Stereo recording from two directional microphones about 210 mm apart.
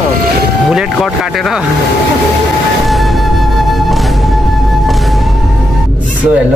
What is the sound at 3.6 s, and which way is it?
Music, centre (ahead or behind).